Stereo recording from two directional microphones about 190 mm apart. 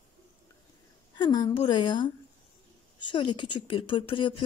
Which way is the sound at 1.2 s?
20° left (ahead or behind).